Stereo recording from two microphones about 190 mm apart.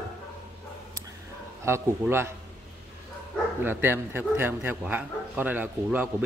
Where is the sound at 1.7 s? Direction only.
15° right (ahead or behind).